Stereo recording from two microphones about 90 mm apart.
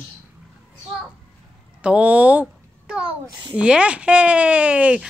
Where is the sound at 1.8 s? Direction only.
15° right (ahead or behind).